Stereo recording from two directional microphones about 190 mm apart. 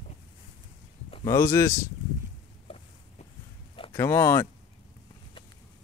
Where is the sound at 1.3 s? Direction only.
15° left (ahead or behind).